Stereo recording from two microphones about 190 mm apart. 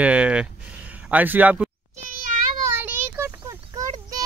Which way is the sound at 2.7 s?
10° right (ahead or behind).